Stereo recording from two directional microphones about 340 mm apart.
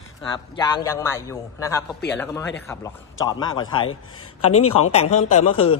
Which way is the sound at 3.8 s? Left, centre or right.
Left.